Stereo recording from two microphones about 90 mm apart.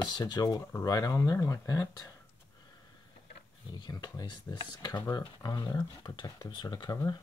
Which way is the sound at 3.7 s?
55° left (ahead or behind).